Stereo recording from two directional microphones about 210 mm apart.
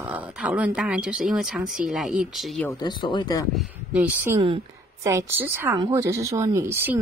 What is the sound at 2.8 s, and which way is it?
Speech, 20° left (ahead or behind).